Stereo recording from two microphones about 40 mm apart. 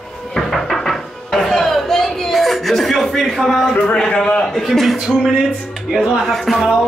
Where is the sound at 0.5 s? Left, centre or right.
Centre.